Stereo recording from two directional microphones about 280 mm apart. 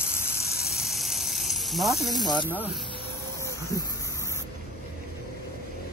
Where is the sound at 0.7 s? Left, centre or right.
Centre.